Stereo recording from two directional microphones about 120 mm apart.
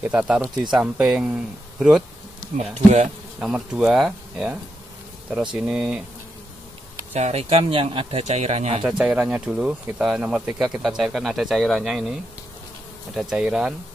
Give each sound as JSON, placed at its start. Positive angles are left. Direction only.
{"t": 0.0, "sound": "speech", "side_deg": -10}
{"t": 2.5, "sound": "speech", "side_deg": -70}
{"t": 3.4, "sound": "speech", "side_deg": -5}
{"t": 5.6, "sound": "speech", "side_deg": -10}
{"t": 7.2, "sound": "speech", "side_deg": -65}
{"t": 8.8, "sound": "speech", "side_deg": -10}